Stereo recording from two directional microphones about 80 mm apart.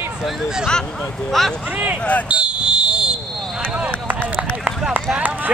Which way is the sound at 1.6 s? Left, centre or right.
Centre.